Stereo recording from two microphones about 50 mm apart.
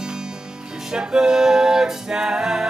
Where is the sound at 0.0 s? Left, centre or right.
Centre.